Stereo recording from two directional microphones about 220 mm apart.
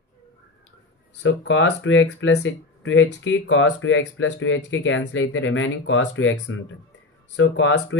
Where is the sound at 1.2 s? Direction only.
55° left (ahead or behind).